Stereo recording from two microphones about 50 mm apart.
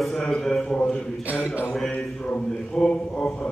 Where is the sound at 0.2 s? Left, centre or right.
Centre.